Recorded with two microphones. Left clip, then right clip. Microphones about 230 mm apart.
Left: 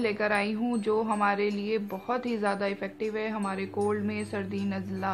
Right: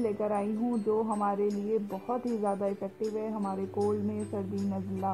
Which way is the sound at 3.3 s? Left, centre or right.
Left.